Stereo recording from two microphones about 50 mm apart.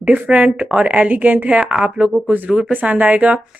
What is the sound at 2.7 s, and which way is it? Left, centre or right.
Speech, right.